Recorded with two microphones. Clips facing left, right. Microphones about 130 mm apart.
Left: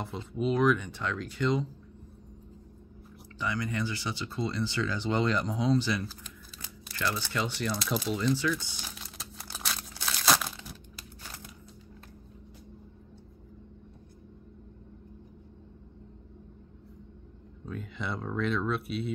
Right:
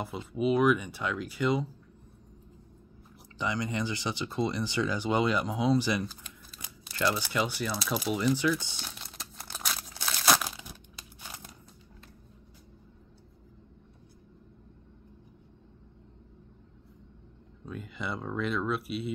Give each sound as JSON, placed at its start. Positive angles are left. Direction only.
{"t": 0.0, "sound": "speech", "side_deg": -5}
{"t": 3.3, "sound": "speech", "side_deg": -20}
{"t": 8.8, "sound": "crumpling", "side_deg": 0}
{"t": 17.6, "sound": "speech", "side_deg": -5}